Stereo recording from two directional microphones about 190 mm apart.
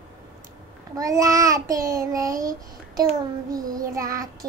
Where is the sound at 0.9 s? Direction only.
20° right (ahead or behind).